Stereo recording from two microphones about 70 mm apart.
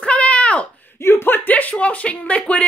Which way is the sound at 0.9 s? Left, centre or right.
Left.